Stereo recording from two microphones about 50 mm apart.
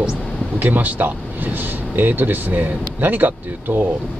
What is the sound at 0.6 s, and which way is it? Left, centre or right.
Speech, right.